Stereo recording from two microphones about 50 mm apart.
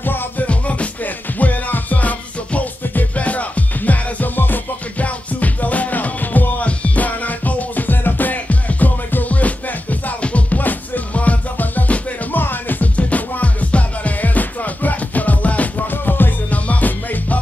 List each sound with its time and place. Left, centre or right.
0.0 s music: left
0.5 s music: left